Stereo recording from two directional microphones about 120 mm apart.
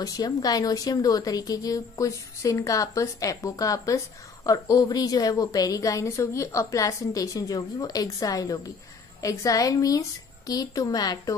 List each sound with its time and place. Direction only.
0.0 s a woman's voice: 30° left (ahead or behind)